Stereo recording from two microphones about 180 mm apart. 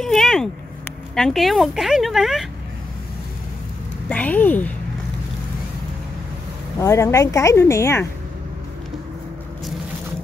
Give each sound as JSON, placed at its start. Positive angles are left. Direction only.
{"t": 0.0, "sound": "a sound", "side_deg": 0}
{"t": 1.1, "sound": "speech", "side_deg": 0}
{"t": 4.1, "sound": "speech", "side_deg": 10}
{"t": 6.8, "sound": "speech", "side_deg": 15}